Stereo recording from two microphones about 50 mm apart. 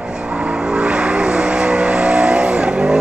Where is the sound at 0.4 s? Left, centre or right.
Centre.